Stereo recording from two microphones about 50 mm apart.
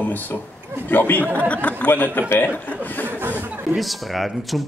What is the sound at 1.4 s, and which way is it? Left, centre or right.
Speech, left.